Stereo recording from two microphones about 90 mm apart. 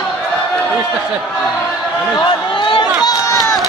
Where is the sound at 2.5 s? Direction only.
65° left (ahead or behind); by 3.4 s 45° left (ahead or behind).